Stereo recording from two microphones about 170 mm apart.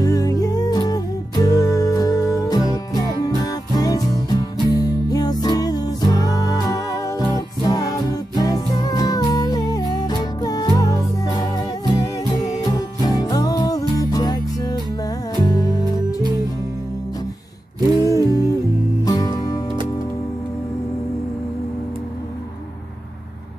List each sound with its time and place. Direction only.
0.0 s music: 20° left (ahead or behind)
18.0 s music: 20° left (ahead or behind)